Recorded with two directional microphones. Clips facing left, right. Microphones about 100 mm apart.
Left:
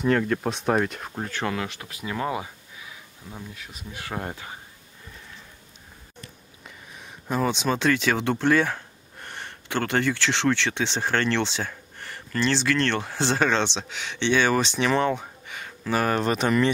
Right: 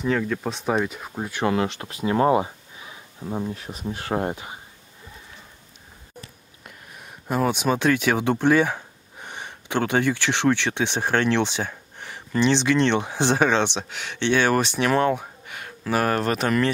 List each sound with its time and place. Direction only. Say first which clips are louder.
0.0 s speech: left 1 dB; centre (ahead or behind)
1.5 s speech: right 7 dB; 30° right (ahead or behind)
6.6 s speech: right 1 dB; 5° right (ahead or behind)